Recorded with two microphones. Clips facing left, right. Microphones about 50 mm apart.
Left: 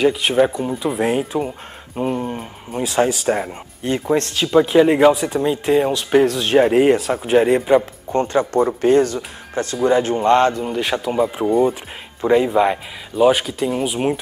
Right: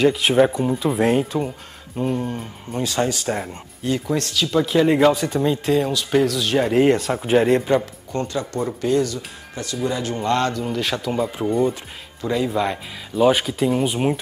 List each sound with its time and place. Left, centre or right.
0.0 s speech: centre
2.1 s speech: left
3.8 s speech: left
4.8 s speech: centre
5.7 s speech: left
6.6 s speech: centre
6.9 s speech: centre
7.8 s speech: left
8.6 s speech: left; by 11.7 s centre
12.2 s speech: left
13.1 s speech: centre